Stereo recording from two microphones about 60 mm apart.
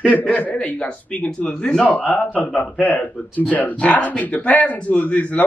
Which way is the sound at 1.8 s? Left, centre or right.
Left.